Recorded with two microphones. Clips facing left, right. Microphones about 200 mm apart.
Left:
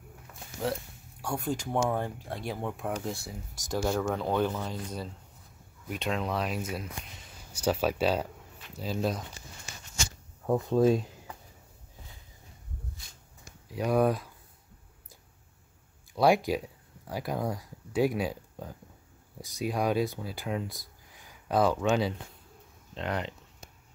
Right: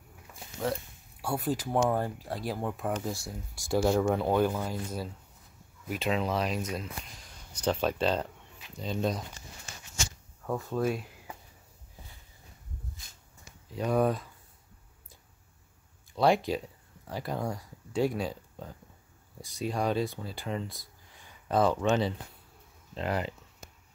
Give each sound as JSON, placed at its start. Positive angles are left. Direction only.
{"t": 1.2, "sound": "speech", "side_deg": -5}
{"t": 3.7, "sound": "speech", "side_deg": -10}
{"t": 10.4, "sound": "speech", "side_deg": 20}
{"t": 13.7, "sound": "speech", "side_deg": 10}
{"t": 16.1, "sound": "speech", "side_deg": 10}
{"t": 20.6, "sound": "speech", "side_deg": 15}
{"t": 21.1, "sound": "a sound", "side_deg": 5}